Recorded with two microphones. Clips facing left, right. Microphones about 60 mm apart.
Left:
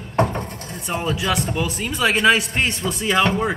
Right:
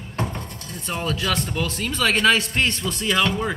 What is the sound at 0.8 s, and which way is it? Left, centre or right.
Speech, centre.